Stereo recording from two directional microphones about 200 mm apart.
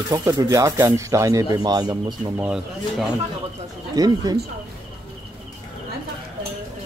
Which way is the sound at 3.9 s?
20° right (ahead or behind).